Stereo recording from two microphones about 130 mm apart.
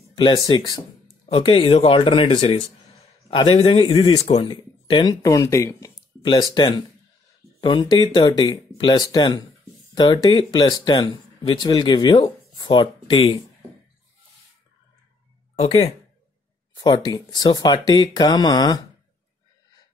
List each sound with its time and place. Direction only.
0.1 s speech: 40° left (ahead or behind)
1.0 s speech: 45° left (ahead or behind); by 5.9 s 20° left (ahead or behind)
6.2 s speech: 35° left (ahead or behind)
15.5 s speech: 50° left (ahead or behind)
16.7 s a sound: 30° left (ahead or behind)
17.1 s speech: 35° left (ahead or behind)